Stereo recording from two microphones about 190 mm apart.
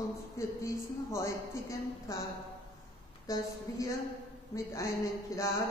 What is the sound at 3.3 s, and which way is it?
Speech, 15° left (ahead or behind).